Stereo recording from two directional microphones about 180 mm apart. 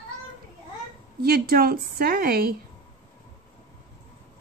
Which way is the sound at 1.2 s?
60° right (ahead or behind).